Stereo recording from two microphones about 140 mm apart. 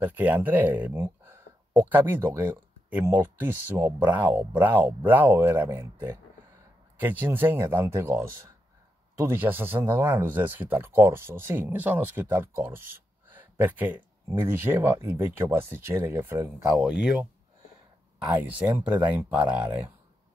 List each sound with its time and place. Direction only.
0.0 s speech: 10° right (ahead or behind)
16.7 s speech: 5° right (ahead or behind)